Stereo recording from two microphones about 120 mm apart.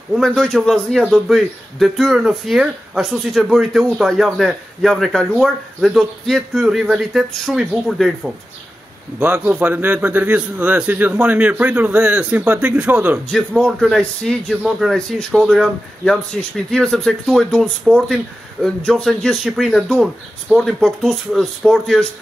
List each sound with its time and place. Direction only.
0.1 s speech: centre (ahead or behind)
9.2 s a man's voice: 15° right (ahead or behind)
13.3 s speech: 5° left (ahead or behind)